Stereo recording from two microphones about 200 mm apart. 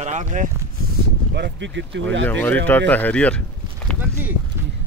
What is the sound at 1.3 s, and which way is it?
Speech, 60° right (ahead or behind).